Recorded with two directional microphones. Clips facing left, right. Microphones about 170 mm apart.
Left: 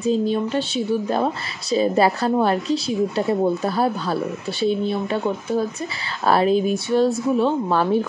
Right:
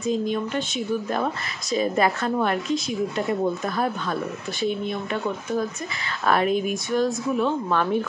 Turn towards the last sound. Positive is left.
turn(degrees=30)  # may be behind; listen again after turning